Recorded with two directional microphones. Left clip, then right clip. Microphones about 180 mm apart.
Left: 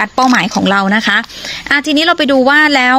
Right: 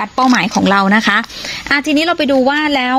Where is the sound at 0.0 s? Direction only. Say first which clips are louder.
Left 2 dB; 25° left (ahead or behind).